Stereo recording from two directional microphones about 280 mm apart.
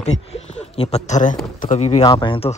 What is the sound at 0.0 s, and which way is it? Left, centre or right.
Speech, left.